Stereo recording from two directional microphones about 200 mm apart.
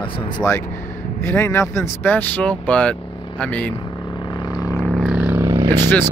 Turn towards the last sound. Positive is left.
turn(degrees=-20)  # may be behind; listen again after turning